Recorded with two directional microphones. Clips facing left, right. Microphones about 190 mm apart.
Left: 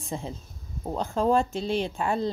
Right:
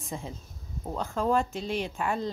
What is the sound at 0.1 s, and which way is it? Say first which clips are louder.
Speech: left 4 dB; 30° left (ahead or behind).